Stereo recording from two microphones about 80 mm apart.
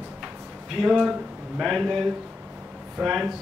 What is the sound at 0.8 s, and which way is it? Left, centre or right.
Speech, centre.